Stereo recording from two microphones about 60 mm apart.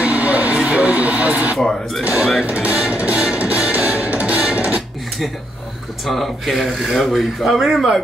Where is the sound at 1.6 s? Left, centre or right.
Centre.